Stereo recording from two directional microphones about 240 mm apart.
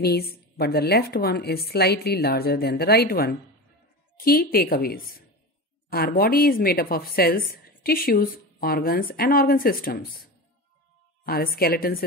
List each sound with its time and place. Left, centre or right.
0.0 s a woman's voice: left
11.2 s a woman's voice: left